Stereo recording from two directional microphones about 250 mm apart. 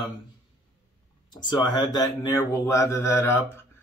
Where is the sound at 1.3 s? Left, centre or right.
Centre.